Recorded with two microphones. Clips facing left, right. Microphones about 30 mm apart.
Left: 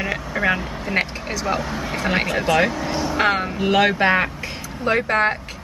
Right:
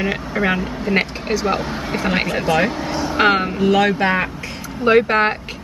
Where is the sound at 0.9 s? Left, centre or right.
Centre.